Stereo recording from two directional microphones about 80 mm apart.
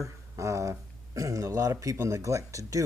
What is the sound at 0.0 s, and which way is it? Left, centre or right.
Speech, right.